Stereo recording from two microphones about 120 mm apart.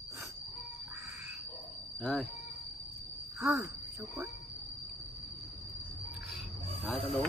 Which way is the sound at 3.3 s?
25° right (ahead or behind).